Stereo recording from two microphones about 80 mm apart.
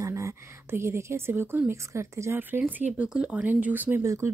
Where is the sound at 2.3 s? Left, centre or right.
Right.